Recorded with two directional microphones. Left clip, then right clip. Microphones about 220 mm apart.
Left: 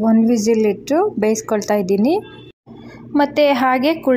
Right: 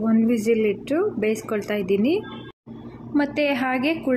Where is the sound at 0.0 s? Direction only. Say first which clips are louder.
Left 6 dB; 15° left (ahead or behind).